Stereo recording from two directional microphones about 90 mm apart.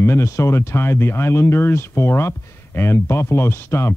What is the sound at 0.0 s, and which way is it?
Speech, 30° left (ahead or behind).